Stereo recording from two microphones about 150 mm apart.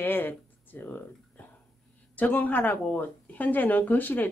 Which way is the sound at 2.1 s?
10° left (ahead or behind).